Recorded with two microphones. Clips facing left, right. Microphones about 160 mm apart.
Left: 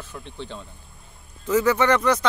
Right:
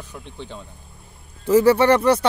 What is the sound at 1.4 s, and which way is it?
Speech, 30° right (ahead or behind).